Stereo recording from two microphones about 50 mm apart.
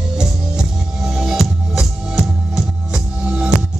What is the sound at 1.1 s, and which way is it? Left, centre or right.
Music, centre.